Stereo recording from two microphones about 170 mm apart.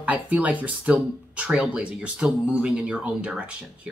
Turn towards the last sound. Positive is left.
turn(degrees=-5)  # may be behind; listen again after turning